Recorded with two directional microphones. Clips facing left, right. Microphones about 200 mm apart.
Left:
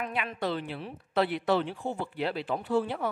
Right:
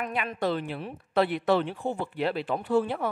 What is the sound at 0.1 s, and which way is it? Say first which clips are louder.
Speech: right 3 dB; 45° right (ahead or behind).